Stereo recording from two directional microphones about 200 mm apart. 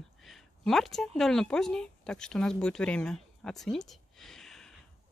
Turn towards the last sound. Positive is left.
turn(degrees=0)  # may be behind; listen again after turning